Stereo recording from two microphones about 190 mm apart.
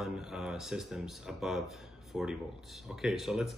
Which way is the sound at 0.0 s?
5° right (ahead or behind).